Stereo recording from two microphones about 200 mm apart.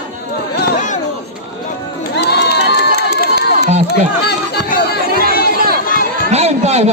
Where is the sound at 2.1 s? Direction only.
55° left (ahead or behind).